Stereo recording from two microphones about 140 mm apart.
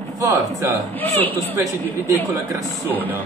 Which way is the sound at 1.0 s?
15° left (ahead or behind).